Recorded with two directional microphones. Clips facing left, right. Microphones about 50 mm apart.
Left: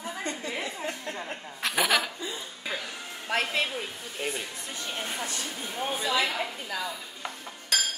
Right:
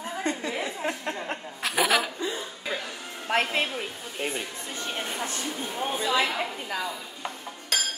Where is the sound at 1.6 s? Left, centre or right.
Centre.